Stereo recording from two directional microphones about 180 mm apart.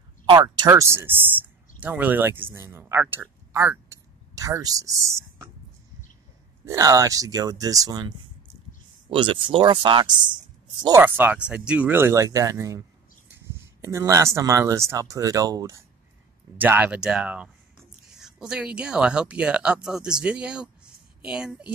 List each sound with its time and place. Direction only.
0.3 s speech: 20° right (ahead or behind)
6.6 s speech: 15° right (ahead or behind)
9.1 s speech: 30° right (ahead or behind)
11.0 s speech: 10° right (ahead or behind)